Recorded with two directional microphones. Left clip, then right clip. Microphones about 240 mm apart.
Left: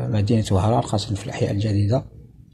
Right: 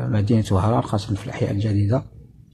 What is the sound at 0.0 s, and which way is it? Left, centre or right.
Speech, centre.